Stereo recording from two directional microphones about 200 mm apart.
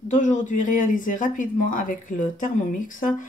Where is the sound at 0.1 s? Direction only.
40° left (ahead or behind).